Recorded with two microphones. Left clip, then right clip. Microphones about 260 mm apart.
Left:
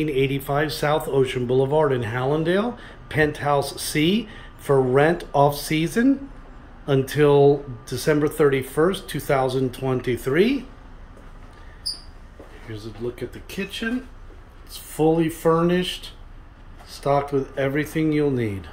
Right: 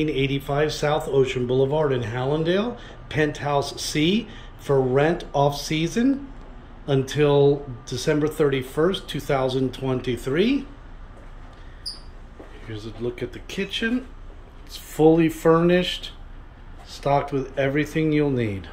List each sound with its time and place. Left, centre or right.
0.0 s speech: centre
12.6 s speech: centre
17.0 s speech: centre